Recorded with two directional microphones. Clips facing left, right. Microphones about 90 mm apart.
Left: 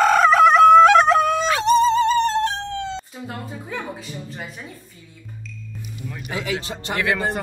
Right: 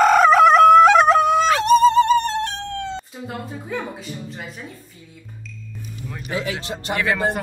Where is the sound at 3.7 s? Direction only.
Centre (ahead or behind).